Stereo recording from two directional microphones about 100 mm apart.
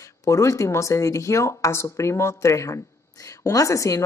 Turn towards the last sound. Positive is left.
turn(degrees=30)  # may be behind; listen again after turning